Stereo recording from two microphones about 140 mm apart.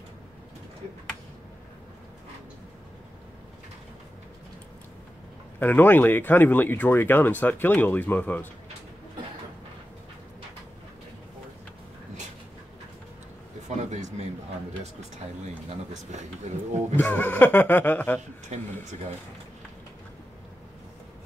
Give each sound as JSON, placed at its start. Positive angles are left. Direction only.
{"t": 5.6, "sound": "speech", "side_deg": 15}
{"t": 13.7, "sound": "a sound", "side_deg": -55}
{"t": 16.1, "sound": "speech", "side_deg": -55}
{"t": 16.9, "sound": "speech", "side_deg": 15}